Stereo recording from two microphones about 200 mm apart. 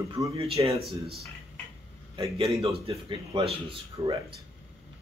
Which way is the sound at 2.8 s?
30° right (ahead or behind).